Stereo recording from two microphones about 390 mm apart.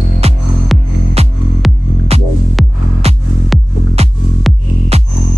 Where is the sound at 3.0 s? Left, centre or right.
Centre.